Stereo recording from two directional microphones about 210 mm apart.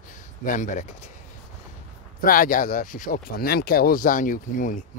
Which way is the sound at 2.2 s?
40° left (ahead or behind).